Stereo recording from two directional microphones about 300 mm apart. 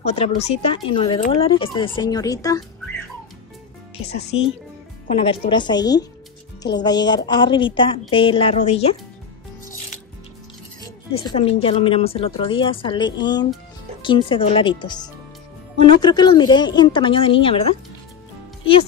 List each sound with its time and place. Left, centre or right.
0.0 s speech: centre
4.1 s speech: left
11.1 s speech: centre